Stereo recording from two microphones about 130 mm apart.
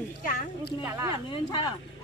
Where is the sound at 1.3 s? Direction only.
35° left (ahead or behind).